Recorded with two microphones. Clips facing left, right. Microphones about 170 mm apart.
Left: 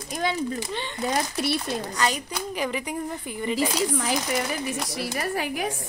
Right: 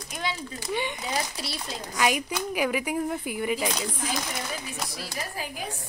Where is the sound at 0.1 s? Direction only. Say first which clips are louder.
Left 6 dB; 45° left (ahead or behind).